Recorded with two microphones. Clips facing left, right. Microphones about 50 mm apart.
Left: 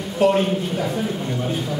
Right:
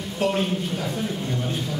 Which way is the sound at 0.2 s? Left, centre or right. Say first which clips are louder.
Left 6 dB; centre.